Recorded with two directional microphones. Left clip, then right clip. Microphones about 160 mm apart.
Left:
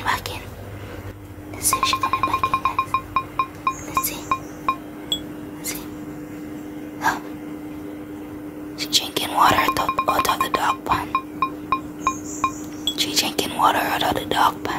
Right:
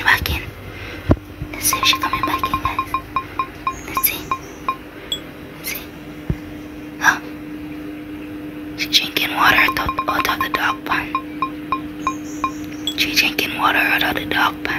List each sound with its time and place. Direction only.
0.0 s whispering: 15° left (ahead or behind)
1.6 s music: 5° left (ahead or behind)
7.0 s hiccup: 15° left (ahead or behind)
8.7 s whispering: 25° left (ahead or behind)
9.8 s music: centre (ahead or behind)
10.1 s music: 30° left (ahead or behind)
11.1 s music: centre (ahead or behind)
12.9 s whispering: 30° left (ahead or behind)